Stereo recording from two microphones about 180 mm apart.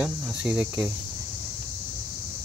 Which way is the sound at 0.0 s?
5° right (ahead or behind).